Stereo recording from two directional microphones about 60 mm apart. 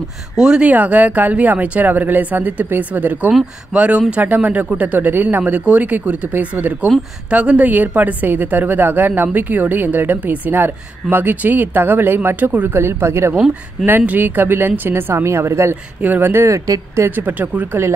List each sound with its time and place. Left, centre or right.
0.4 s a woman's voice: centre; by 13.3 s right
13.8 s a woman's voice: right
16.0 s a woman's voice: right
16.5 s speech: right
17.1 s speech: right